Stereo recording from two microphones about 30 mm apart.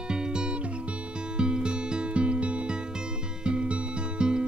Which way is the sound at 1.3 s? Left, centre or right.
Right.